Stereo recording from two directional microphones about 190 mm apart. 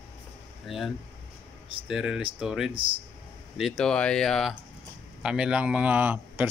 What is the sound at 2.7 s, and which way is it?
Speech, 25° right (ahead or behind).